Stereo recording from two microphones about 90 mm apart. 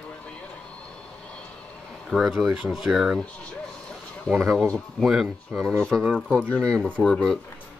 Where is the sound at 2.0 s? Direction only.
5° right (ahead or behind).